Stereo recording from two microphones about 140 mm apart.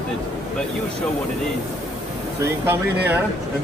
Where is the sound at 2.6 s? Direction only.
15° right (ahead or behind).